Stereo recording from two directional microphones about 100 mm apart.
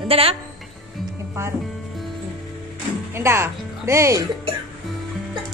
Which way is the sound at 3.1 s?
25° right (ahead or behind).